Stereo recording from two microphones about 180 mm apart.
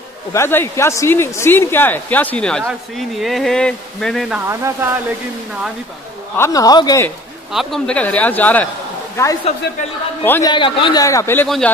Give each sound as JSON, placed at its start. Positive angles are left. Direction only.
{"t": 0.3, "sound": "speech", "side_deg": 15}
{"t": 4.5, "sound": "speech", "side_deg": -15}
{"t": 6.3, "sound": "a man's voice", "side_deg": 15}
{"t": 7.5, "sound": "speech", "side_deg": 5}
{"t": 10.5, "sound": "a man's voice", "side_deg": 25}
{"t": 11.4, "sound": "speech", "side_deg": 0}